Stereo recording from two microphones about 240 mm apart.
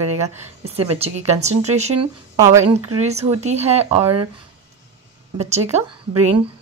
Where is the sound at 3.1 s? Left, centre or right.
Right.